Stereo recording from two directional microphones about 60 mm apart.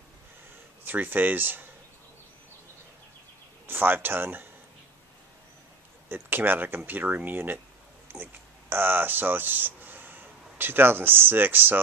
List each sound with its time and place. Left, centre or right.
0.8 s speech: right
3.6 s speech: right
6.0 s speech: right